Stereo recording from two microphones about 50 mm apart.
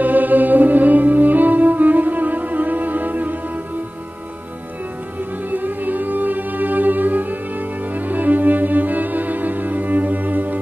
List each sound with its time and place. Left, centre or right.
0.0 s music: right
5.5 s music: right